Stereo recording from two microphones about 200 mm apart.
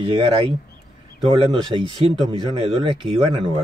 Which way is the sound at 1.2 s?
25° right (ahead or behind).